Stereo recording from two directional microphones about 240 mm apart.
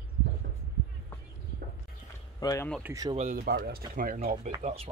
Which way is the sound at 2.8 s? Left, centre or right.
Centre.